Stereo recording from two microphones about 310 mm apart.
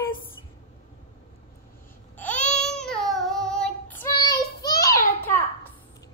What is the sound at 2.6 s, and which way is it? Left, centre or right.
Child singing, centre.